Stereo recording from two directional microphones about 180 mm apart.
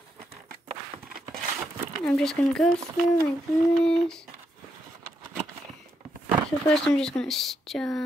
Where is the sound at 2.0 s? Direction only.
5° left (ahead or behind).